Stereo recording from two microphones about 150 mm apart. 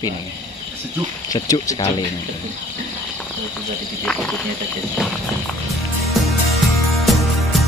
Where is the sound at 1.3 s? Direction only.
25° left (ahead or behind).